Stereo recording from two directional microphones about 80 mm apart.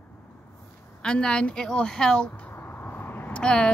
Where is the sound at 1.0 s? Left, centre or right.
Centre.